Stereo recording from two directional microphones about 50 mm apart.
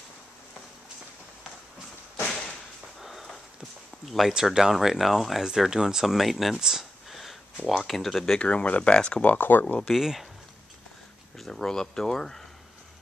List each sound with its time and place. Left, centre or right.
2.2 s a sound: centre
3.0 s a sound: centre
4.0 s speech: centre
4.3 s speech: centre
8.4 s speech: left
9.2 s speech: left
9.8 s speech: centre
11.3 s speech: centre